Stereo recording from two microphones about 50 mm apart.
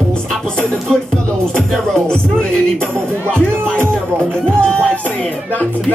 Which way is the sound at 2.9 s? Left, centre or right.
Right.